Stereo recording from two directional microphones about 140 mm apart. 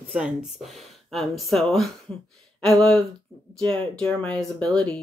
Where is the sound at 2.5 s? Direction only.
5° left (ahead or behind).